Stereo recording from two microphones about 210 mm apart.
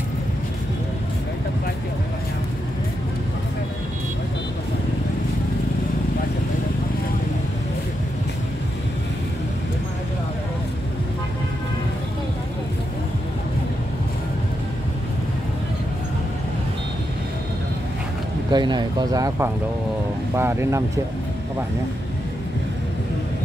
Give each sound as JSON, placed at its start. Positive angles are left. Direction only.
{"t": 18.5, "sound": "speech", "side_deg": -20}